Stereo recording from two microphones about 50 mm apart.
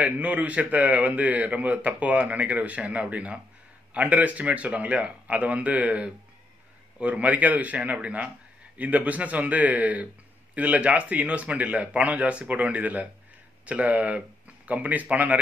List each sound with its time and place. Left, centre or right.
0.0 s a man's voice: right